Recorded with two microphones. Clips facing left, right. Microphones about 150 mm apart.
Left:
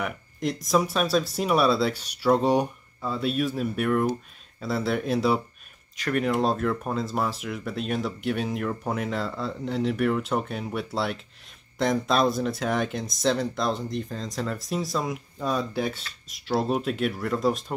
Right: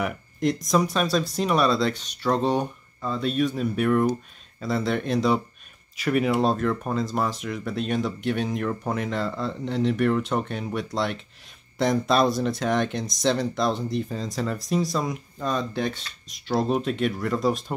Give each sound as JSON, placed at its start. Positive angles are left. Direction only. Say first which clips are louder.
{"t": 0.0, "sound": "speech", "louder": "right 4 dB", "side_deg": 0}